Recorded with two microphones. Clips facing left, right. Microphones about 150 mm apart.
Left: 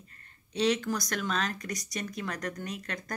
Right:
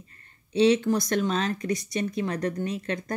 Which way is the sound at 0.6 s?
25° right (ahead or behind).